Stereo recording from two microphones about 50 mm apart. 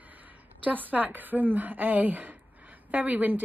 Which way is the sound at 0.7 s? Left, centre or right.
Right.